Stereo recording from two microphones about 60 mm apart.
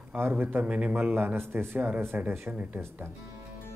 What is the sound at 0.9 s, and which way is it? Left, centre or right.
Speech, right.